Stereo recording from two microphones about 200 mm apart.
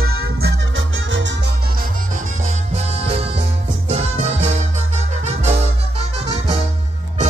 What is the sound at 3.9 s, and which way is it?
Music, 35° right (ahead or behind).